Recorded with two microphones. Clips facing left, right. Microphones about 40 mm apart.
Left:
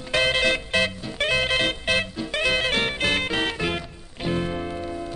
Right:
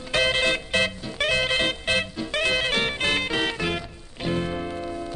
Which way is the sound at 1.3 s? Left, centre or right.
Left.